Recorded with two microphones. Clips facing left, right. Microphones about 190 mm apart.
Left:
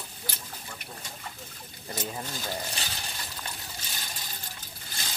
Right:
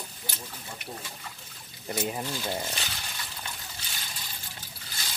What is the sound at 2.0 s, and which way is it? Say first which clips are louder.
Speech: right 4 dB; 15° right (ahead or behind).